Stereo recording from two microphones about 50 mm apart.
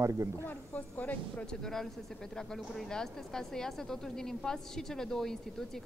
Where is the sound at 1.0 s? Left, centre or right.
Left.